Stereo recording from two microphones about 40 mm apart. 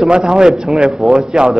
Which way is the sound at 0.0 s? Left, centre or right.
Centre.